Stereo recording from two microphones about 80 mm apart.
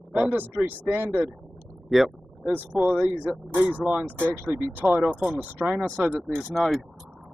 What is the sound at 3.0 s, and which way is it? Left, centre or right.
Speech, centre.